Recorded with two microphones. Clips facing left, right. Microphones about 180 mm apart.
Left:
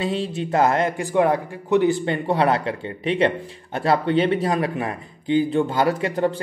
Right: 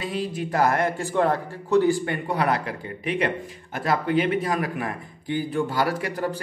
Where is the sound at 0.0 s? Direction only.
25° left (ahead or behind).